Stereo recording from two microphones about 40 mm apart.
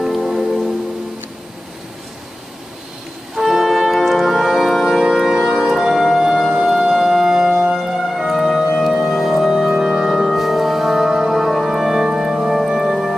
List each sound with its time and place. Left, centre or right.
0.0 s music: centre
0.3 s music: centre
3.5 s music: centre
5.0 s music: centre